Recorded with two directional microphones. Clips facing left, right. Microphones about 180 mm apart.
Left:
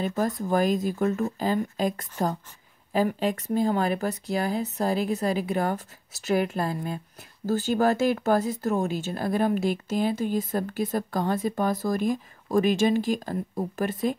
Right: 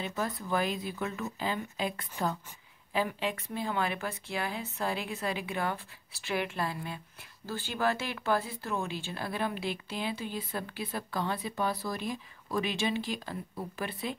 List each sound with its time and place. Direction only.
0.0 s speech: 40° left (ahead or behind)